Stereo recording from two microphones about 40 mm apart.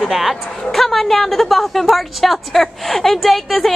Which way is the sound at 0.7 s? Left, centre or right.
Centre.